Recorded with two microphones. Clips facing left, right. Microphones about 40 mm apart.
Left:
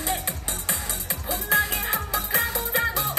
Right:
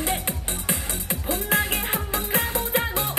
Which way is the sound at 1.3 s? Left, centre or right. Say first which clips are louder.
Left 1 dB; right.